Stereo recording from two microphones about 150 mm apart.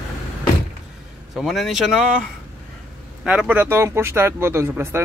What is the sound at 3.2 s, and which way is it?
Speech, 5° right (ahead or behind).